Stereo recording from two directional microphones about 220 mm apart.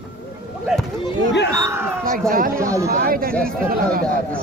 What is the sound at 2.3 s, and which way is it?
Speech, 40° right (ahead or behind).